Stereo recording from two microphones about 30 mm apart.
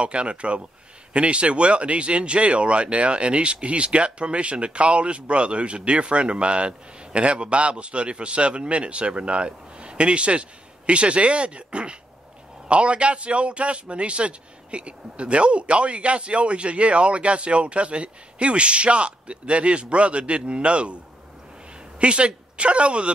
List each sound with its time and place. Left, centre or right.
0.0 s a man's voice: right
22.0 s a man's voice: right